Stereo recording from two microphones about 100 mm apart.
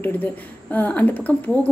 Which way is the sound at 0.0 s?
15° left (ahead or behind).